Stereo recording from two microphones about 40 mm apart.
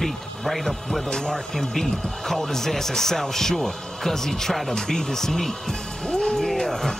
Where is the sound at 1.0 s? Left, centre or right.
Centre.